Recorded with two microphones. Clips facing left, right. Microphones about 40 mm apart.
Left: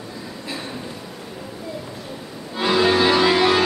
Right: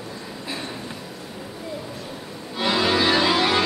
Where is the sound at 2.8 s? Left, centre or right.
Centre.